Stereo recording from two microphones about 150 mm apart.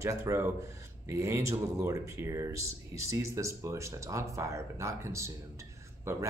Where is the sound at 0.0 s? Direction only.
20° right (ahead or behind).